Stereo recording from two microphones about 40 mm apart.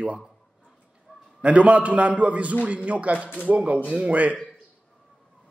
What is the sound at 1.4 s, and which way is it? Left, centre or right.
A woman's voice, right.